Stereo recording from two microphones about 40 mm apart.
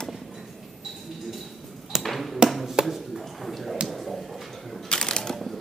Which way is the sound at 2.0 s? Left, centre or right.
Centre.